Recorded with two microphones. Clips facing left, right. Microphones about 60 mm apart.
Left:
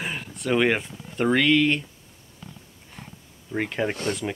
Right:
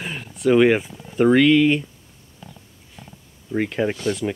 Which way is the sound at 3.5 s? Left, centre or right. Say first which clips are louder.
Right 4 dB; centre.